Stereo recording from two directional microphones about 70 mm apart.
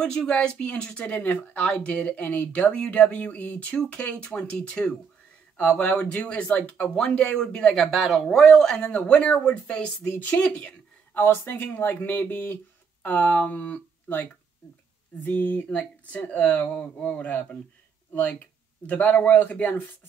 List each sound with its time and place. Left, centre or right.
0.0 s speech: centre
15.2 s speech: left
18.9 s speech: left